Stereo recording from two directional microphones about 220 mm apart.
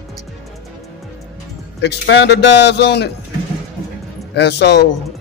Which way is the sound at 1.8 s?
50° left (ahead or behind).